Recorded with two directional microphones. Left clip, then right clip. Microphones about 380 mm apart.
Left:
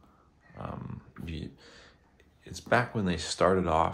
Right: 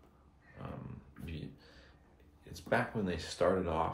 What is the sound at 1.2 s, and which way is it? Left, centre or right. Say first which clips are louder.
Speech: left 5 dB; centre.